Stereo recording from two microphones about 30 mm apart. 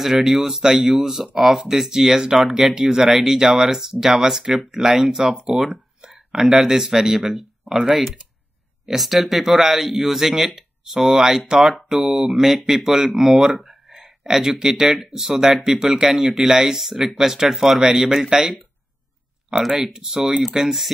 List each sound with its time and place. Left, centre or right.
0.0 s speech: centre
5.5 s a sound: centre
6.4 s speech: centre
11.1 s speech: centre
19.8 s speech: centre